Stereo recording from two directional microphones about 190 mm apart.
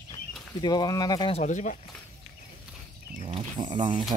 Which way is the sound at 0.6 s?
20° left (ahead or behind).